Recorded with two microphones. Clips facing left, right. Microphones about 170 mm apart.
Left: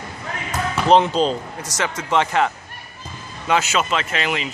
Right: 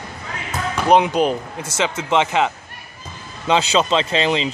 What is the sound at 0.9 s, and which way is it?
Speech, 15° right (ahead or behind).